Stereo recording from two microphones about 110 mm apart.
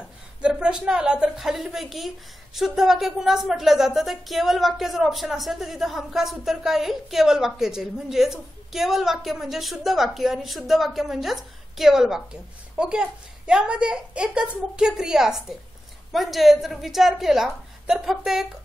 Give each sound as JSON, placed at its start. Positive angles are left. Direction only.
{"t": 0.4, "sound": "a woman's voice", "side_deg": -10}